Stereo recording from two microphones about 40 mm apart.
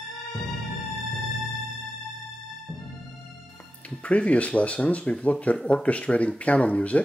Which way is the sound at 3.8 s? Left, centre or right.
Left.